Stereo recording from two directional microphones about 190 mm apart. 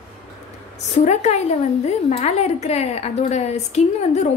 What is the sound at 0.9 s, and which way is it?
A woman's voice, 35° left (ahead or behind).